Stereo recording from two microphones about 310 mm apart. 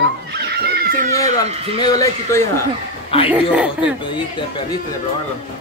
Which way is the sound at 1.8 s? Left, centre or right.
Centre.